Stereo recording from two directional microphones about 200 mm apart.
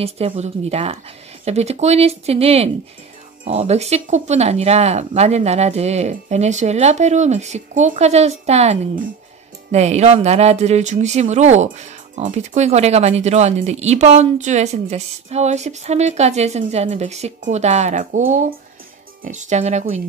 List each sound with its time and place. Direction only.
0.0 s speech: 30° right (ahead or behind)
19.2 s speech: 35° right (ahead or behind)